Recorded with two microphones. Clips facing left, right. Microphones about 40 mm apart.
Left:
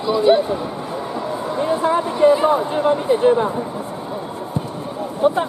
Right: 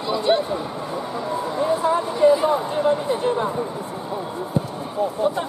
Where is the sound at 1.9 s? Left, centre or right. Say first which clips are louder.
Left 3 dB; left.